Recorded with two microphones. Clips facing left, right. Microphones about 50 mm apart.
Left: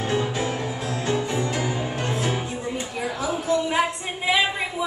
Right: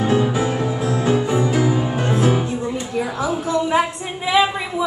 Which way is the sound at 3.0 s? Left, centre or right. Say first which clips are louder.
Right 6 dB; centre.